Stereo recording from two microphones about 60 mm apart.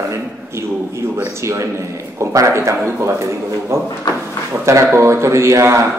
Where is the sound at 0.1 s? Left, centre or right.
Right.